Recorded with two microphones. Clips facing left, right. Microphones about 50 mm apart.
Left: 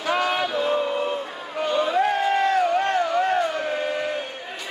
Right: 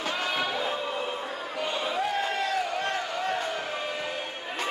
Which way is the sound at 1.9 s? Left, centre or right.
Left.